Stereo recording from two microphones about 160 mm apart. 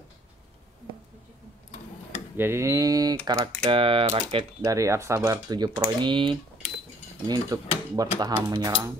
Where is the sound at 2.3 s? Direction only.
15° right (ahead or behind).